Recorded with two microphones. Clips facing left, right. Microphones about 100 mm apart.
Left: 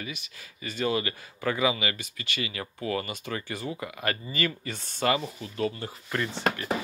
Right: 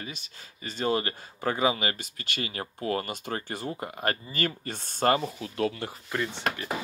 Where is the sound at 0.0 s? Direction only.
35° right (ahead or behind).